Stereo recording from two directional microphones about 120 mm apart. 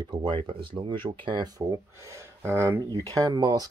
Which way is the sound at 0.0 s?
40° right (ahead or behind).